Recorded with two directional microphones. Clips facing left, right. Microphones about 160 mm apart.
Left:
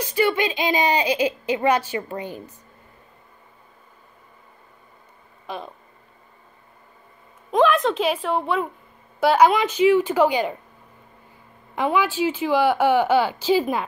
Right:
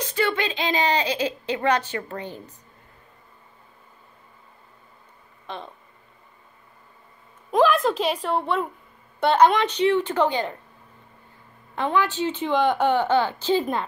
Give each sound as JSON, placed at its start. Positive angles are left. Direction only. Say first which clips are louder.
{"t": 0.0, "sound": "speech", "louder": "left 3 dB", "side_deg": 10}
{"t": 7.5, "sound": "a woman's voice", "louder": "left 1 dB", "side_deg": 0}
{"t": 11.7, "sound": "speech", "louder": "left 2 dB", "side_deg": 10}